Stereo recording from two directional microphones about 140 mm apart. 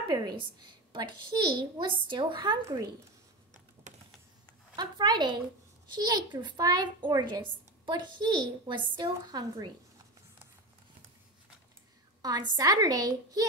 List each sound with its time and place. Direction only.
0.1 s a child's voice: 30° right (ahead or behind)
3.9 s typing: 60° right (ahead or behind)
4.7 s a child's voice: 30° right (ahead or behind)
12.2 s a woman's voice: 30° right (ahead or behind)